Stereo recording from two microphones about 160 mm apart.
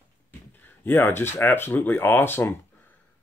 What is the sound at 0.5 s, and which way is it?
Speech, 10° left (ahead or behind).